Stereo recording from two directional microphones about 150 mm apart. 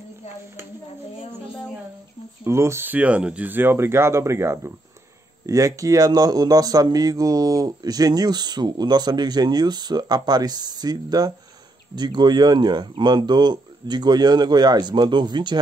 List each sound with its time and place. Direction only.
2.4 s speech: 20° right (ahead or behind)